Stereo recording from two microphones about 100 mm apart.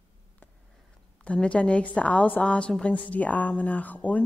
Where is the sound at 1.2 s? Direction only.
10° left (ahead or behind).